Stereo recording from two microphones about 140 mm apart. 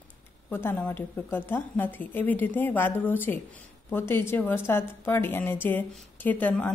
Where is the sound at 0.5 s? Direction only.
15° left (ahead or behind).